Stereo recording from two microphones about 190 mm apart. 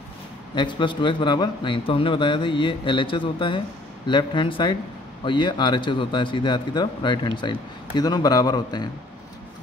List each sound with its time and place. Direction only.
0.6 s a man's voice: 25° left (ahead or behind)